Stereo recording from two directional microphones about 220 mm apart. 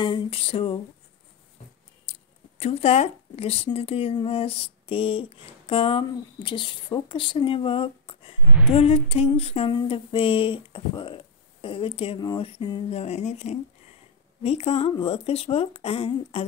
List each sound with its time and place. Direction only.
0.0 s speech: 25° left (ahead or behind)
2.0 s speech: 30° left (ahead or behind)